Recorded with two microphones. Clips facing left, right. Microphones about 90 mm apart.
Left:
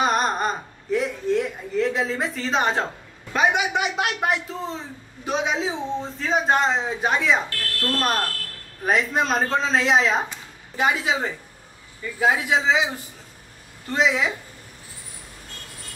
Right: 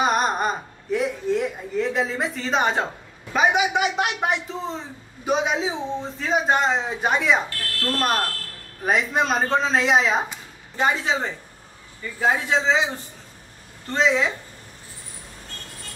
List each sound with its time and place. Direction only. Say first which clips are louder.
0.0 s a sound: even; 5° right (ahead or behind)
3.3 s a man's voice: right 1 dB; centre (ahead or behind)
7.4 s speech: even; 20° right (ahead or behind)
8.0 s a man's voice: right 2 dB; centre (ahead or behind)